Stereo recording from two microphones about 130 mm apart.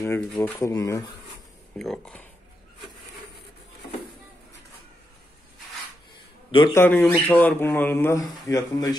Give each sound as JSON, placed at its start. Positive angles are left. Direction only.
{"t": 0.0, "sound": "speech", "side_deg": 20}
{"t": 1.8, "sound": "speech", "side_deg": 5}
{"t": 6.7, "sound": "speech", "side_deg": 15}
{"t": 8.2, "sound": "speech", "side_deg": 25}